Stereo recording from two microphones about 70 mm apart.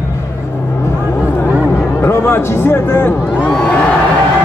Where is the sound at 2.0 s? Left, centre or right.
Left.